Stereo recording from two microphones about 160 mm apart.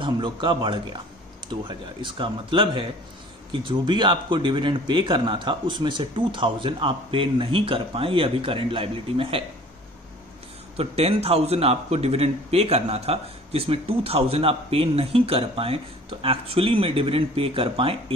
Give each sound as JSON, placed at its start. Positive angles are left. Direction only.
{"t": 0.0, "sound": "a man's voice", "side_deg": -30}
{"t": 10.8, "sound": "a man's voice", "side_deg": -40}